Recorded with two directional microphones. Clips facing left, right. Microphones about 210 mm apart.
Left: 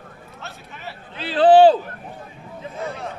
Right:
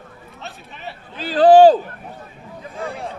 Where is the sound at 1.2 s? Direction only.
40° right (ahead or behind).